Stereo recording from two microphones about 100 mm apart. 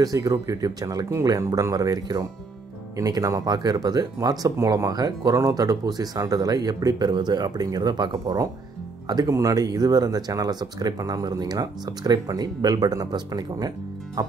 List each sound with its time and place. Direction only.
0.0 s speech: 35° right (ahead or behind)